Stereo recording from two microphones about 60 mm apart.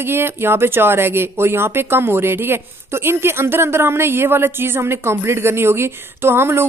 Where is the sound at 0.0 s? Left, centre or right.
Right.